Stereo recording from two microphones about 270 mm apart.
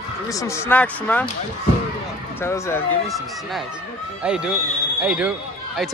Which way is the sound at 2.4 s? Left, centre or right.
Centre.